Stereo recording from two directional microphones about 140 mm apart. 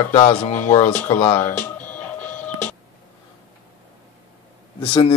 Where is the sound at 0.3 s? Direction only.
55° left (ahead or behind).